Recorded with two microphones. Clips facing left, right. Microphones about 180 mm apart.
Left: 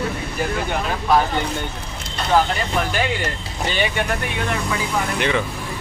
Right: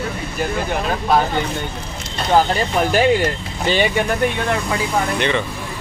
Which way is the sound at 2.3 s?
30° right (ahead or behind).